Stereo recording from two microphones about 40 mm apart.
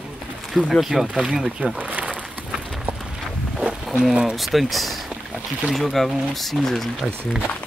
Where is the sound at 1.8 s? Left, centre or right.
Right.